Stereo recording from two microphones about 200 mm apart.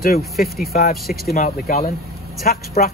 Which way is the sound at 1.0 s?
Centre (ahead or behind).